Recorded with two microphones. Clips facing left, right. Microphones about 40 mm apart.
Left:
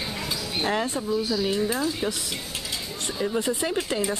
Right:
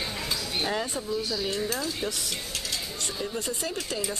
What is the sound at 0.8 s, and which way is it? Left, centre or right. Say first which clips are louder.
Speech: left 4 dB; centre.